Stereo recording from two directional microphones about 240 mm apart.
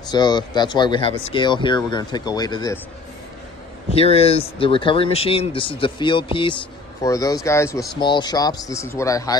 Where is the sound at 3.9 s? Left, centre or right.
Left.